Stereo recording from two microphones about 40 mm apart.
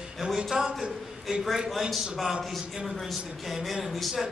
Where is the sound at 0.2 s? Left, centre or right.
Centre.